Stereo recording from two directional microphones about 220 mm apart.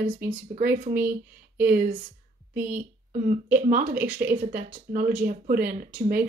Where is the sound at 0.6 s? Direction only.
40° right (ahead or behind).